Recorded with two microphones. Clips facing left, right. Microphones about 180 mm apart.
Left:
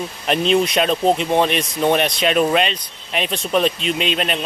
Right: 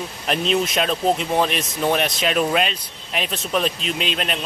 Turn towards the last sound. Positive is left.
turn(degrees=0)  # may be behind; listen again after turning